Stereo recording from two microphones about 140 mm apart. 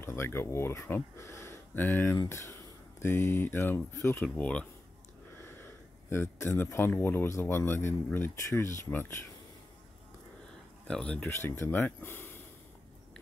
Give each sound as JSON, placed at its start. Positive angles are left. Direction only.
{"t": 0.0, "sound": "speech", "side_deg": 15}
{"t": 6.0, "sound": "speech", "side_deg": 15}
{"t": 10.9, "sound": "speech", "side_deg": 5}